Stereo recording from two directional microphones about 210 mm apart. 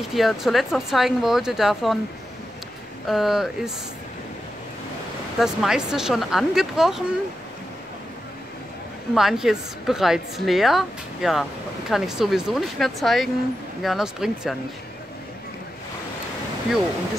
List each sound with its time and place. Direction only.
0.1 s a woman's voice: centre (ahead or behind)
3.1 s a woman's voice: centre (ahead or behind)
5.4 s a woman's voice: centre (ahead or behind)
9.1 s a woman's voice: centre (ahead or behind)